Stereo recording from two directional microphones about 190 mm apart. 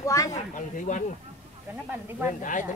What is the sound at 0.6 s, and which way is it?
Speech, 40° left (ahead or behind).